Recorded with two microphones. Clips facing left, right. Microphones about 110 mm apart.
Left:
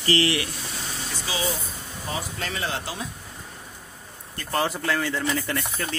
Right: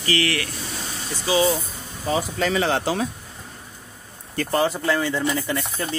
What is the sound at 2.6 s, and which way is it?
Speech, 80° right.